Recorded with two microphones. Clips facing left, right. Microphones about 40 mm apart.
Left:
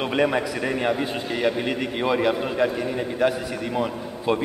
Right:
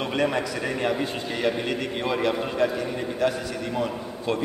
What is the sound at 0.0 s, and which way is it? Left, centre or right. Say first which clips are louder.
A man's voice: left 3 dB; centre.